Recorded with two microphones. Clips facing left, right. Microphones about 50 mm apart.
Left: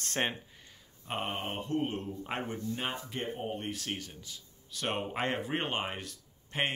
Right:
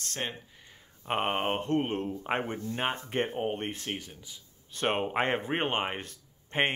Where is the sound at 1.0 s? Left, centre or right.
Right.